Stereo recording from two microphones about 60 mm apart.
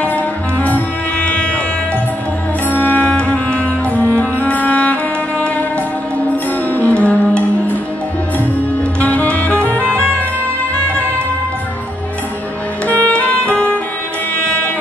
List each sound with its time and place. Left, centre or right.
0.0 s music: left
2.7 s music: left
6.9 s music: left
9.0 s music: left
12.8 s music: left